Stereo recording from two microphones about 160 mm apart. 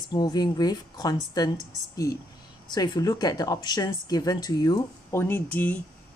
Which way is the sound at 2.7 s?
25° left (ahead or behind).